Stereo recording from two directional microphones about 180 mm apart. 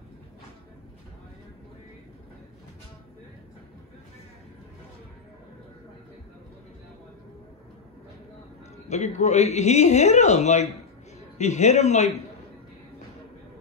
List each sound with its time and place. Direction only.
8.8 s speech: 40° left (ahead or behind)